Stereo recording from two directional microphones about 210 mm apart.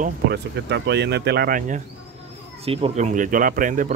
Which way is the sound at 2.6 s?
30° right (ahead or behind).